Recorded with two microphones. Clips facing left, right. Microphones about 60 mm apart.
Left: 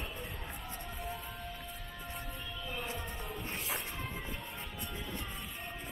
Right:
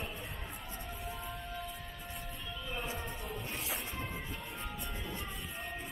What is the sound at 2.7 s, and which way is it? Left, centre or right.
Music, centre.